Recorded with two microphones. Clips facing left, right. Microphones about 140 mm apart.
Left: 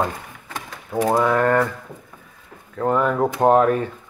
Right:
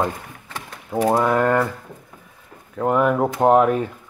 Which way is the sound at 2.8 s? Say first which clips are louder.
Right 1 dB; 10° right (ahead or behind).